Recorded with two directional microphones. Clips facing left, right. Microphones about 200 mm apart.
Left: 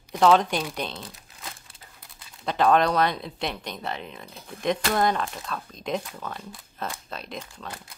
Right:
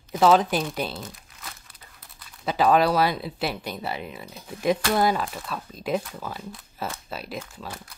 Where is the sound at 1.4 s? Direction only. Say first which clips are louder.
Left 5 dB; 25° left (ahead or behind).